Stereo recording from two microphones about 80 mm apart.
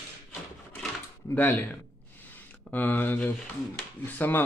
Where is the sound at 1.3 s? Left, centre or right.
Left.